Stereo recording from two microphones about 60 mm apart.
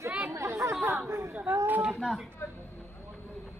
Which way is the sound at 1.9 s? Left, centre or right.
Centre.